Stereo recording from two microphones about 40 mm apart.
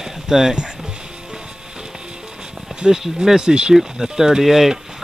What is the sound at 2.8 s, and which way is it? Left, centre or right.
Speech, centre.